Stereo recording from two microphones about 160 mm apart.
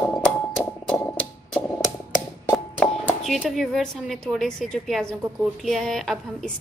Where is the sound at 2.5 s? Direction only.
5° left (ahead or behind).